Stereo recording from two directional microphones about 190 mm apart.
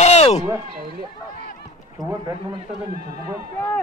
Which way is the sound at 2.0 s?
20° right (ahead or behind).